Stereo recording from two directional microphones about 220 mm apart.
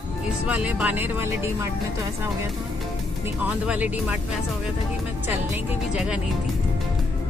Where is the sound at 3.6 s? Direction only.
5° right (ahead or behind).